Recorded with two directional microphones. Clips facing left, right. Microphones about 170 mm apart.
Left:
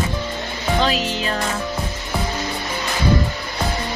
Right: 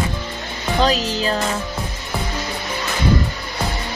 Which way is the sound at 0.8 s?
40° right (ahead or behind).